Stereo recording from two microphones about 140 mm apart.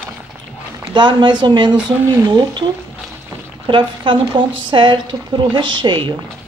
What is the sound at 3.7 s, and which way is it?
A woman's voice, 35° right (ahead or behind).